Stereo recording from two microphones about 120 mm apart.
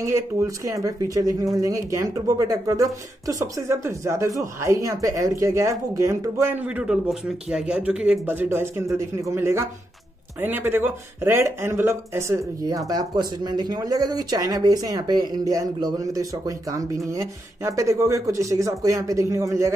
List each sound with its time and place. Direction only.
0.0 s speech: 25° right (ahead or behind)